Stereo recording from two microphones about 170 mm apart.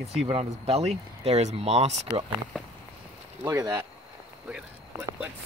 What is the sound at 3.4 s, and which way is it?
Speech, 15° right (ahead or behind).